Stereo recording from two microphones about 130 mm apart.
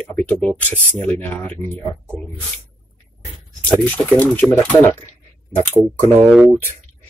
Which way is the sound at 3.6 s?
10° left (ahead or behind).